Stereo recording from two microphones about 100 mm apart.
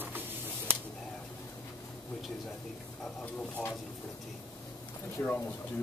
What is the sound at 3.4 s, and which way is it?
Speech, 15° left (ahead or behind).